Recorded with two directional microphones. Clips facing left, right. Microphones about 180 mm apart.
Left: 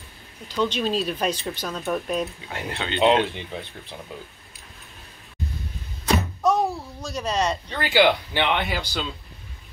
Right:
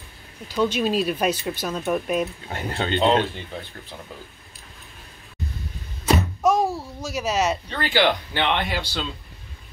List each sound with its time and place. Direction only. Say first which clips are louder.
0.5 s speech: right 2 dB; 10° right (ahead or behind)
2.5 s speech: right 6 dB; 40° right (ahead or behind)
3.0 s speech: left 2 dB; 5° left (ahead or behind)
6.0 s a sound: right 2 dB; 10° right (ahead or behind)
7.7 s speech: left 4 dB; 10° left (ahead or behind)